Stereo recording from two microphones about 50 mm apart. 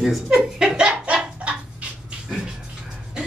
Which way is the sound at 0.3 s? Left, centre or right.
Centre.